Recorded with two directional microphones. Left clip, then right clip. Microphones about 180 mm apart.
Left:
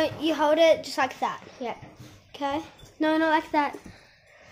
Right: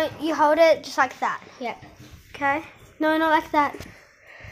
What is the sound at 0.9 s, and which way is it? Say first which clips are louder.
Speech: right 4 dB; centre (ahead or behind).